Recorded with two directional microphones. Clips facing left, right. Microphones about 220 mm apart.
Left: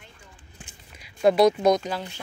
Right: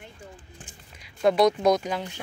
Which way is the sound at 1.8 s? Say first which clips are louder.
Right 1 dB; 15° right (ahead or behind).